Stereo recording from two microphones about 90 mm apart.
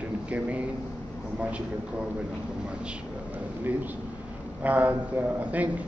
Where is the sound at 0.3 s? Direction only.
15° right (ahead or behind).